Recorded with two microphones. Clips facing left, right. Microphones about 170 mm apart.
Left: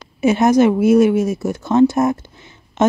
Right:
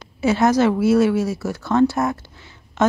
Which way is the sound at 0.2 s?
20° left (ahead or behind).